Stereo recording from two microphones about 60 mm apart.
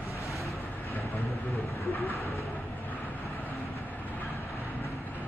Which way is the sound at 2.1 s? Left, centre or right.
Left.